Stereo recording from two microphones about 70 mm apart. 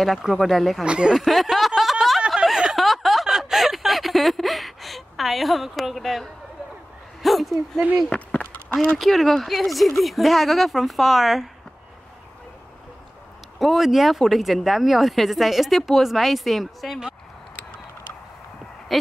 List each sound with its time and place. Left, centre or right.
0.0 s speech: centre
0.8 s speech: centre
1.1 s speech: centre
1.8 s a sound: centre
7.2 s speech: centre
8.1 s a sound: centre
8.9 s speech: centre
13.6 s speech: centre
18.9 s owl: centre